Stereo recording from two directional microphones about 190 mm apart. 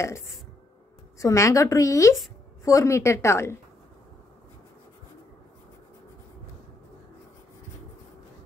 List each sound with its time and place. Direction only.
1.2 s a woman's voice: 15° left (ahead or behind)